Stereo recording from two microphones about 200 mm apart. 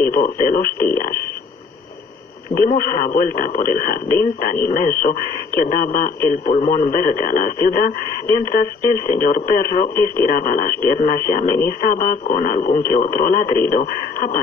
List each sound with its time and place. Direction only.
0.0 s speech: 45° left (ahead or behind)
2.5 s speech: 45° left (ahead or behind)